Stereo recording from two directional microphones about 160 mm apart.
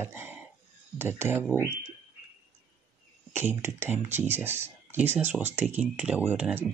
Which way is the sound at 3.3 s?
15° right (ahead or behind).